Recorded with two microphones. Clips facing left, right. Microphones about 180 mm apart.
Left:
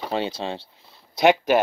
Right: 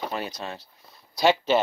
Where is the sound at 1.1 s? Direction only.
20° left (ahead or behind).